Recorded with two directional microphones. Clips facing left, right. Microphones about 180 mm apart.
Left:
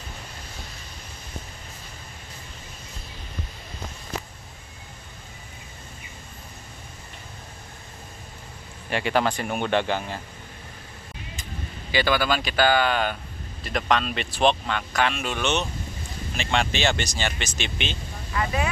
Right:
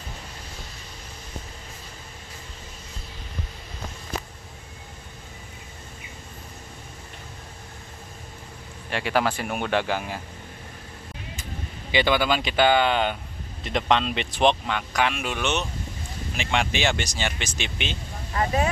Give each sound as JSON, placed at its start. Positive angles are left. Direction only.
{"t": 8.9, "sound": "speech", "side_deg": -5}
{"t": 11.9, "sound": "speech", "side_deg": -20}
{"t": 18.3, "sound": "speech", "side_deg": -35}